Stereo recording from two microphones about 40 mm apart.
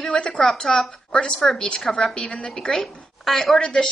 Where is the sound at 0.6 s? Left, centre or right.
Centre.